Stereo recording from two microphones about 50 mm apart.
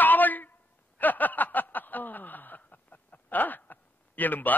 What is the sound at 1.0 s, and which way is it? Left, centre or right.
Snicker, left.